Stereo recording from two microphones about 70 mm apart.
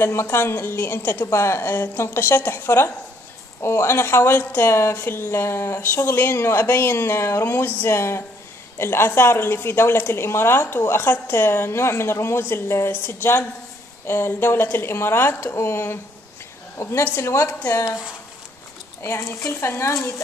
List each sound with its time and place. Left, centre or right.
0.0 s a woman's voice: left
1.2 s a woman's voice: left
17.0 s a woman's voice: left
17.6 s speech: left
19.0 s a woman's voice: left